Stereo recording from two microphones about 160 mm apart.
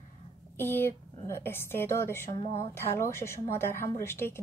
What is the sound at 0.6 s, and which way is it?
Speech, 15° left (ahead or behind).